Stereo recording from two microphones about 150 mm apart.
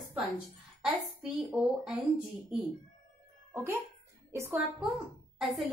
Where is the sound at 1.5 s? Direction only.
Centre (ahead or behind).